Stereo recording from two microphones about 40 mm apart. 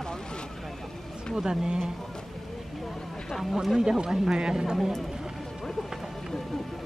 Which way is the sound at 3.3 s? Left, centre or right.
Centre.